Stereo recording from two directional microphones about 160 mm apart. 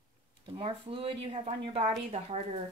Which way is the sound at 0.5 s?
35° right (ahead or behind).